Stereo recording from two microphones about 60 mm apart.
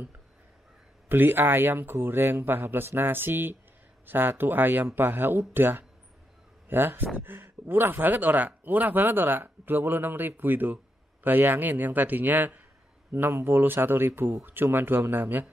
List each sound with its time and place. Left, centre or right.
1.0 s speech: right